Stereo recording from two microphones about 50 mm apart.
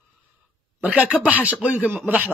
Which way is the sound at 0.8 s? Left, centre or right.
Right.